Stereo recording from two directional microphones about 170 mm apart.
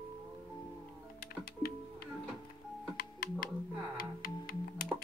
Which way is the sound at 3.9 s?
55° left (ahead or behind).